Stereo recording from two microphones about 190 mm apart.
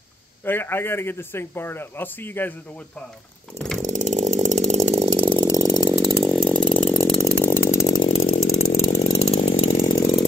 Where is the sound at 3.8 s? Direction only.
40° right (ahead or behind); by 5.6 s 20° right (ahead or behind).